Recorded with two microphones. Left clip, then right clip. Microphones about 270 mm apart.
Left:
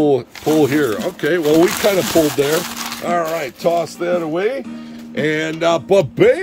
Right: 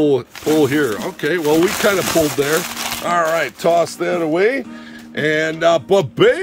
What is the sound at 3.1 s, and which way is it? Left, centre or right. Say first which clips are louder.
Speech: right 3 dB; centre.